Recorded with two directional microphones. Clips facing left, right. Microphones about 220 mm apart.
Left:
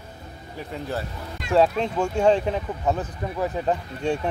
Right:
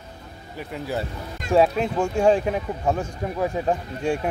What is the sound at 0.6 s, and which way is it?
Speech, 5° right (ahead or behind).